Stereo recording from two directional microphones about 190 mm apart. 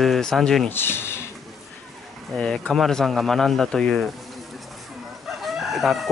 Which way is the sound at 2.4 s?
5° left (ahead or behind).